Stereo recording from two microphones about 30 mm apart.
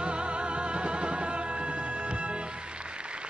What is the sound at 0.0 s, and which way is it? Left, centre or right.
Music, right.